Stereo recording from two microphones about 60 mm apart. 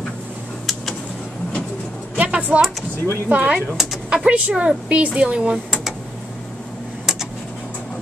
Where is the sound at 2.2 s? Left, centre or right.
Right.